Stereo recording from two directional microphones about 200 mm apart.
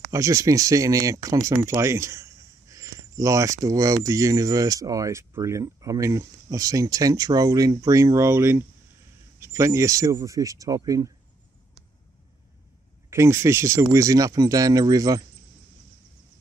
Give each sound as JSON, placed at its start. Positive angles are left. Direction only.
{"t": 0.1, "sound": "speech", "side_deg": -15}
{"t": 13.1, "sound": "speech", "side_deg": -15}